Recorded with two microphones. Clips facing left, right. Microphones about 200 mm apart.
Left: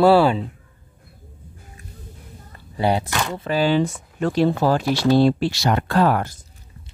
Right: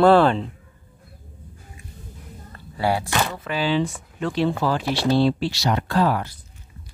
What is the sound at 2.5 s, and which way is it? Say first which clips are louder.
Speech: left 2 dB; 20° left (ahead or behind).